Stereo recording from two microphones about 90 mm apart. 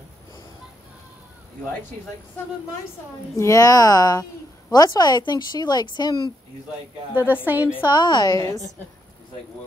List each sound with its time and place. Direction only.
3.3 s a woman's voice: 40° left (ahead or behind); by 6.3 s 55° left (ahead or behind)
7.4 s a woman's voice: 20° right (ahead or behind)
7.9 s a woman's voice: 55° left (ahead or behind)